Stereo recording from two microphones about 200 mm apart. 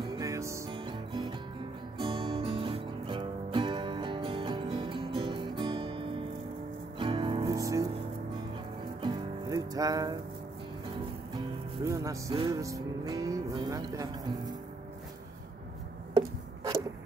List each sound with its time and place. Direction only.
0.0 s music: 15° right (ahead or behind)
0.7 s music: 25° right (ahead or behind)
9.0 s music: 20° right (ahead or behind)
11.8 s music: 15° right (ahead or behind)
16.1 s a sound: 20° right (ahead or behind)